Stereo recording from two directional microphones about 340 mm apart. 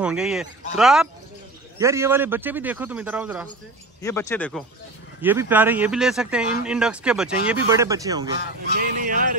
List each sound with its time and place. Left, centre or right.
0.0 s speech: centre
4.0 s speech: centre
8.7 s a sound: right